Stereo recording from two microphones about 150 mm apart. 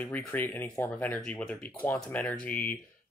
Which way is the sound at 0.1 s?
10° left (ahead or behind).